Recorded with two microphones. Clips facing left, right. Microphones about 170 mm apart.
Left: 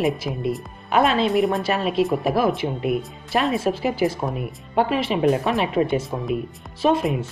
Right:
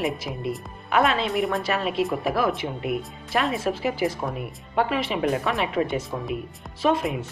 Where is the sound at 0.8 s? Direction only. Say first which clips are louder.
Left 3 dB; 25° left (ahead or behind).